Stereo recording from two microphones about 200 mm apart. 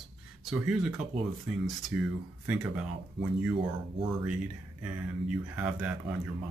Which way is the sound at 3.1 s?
25° right (ahead or behind).